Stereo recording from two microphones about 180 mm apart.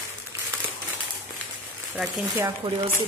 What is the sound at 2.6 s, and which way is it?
Speech, 25° right (ahead or behind).